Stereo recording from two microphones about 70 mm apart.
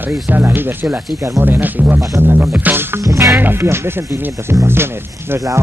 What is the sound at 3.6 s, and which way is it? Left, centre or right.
Speech, right.